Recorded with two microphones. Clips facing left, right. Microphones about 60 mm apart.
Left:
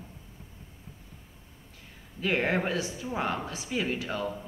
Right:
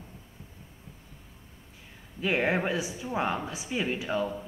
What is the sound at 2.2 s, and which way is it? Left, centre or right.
Speech, centre.